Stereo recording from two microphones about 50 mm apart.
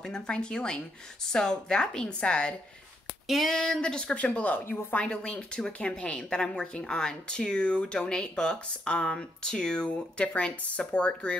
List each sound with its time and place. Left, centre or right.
0.0 s a woman's voice: centre
3.3 s a sound: centre
3.5 s speech: centre